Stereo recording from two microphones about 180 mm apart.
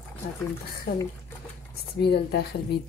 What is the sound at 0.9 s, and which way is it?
Speech, 60° left (ahead or behind).